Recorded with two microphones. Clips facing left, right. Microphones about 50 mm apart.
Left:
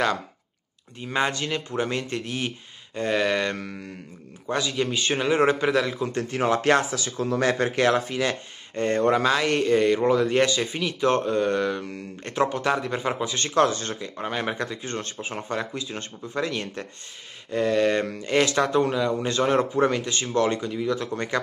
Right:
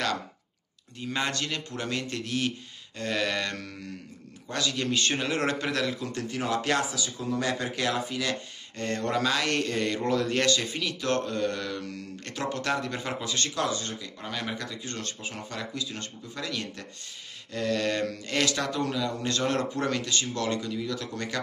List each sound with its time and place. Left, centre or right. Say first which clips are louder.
0.9 s a man's voice: left 5 dB; left
6.1 s speech: left 9 dB; left
8.3 s speech: left 3 dB; left
13.6 s speech: left 12 dB; left
14.2 s speech: left 6 dB; left
17.5 s speech: left 6 dB; left